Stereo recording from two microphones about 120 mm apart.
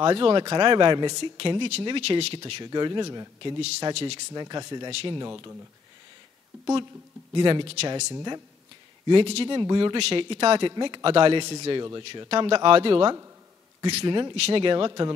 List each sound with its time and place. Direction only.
0.0 s speech: 45° right (ahead or behind)
3.9 s speech: 60° right (ahead or behind)
4.3 s speech: 35° right (ahead or behind)
5.3 s speech: 25° right (ahead or behind)
7.3 s speech: 45° right (ahead or behind)
8.1 s speech: 35° right (ahead or behind)
9.0 s speech: 50° right (ahead or behind)
9.9 s speech: 50° right (ahead or behind)
14.3 s speech: 55° right (ahead or behind)
14.9 s speech: 35° right (ahead or behind)